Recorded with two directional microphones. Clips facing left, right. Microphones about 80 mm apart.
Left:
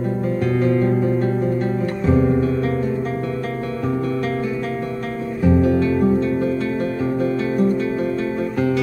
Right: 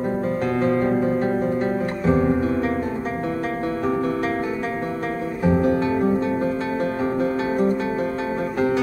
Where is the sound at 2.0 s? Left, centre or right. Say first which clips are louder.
Left 2 dB; right.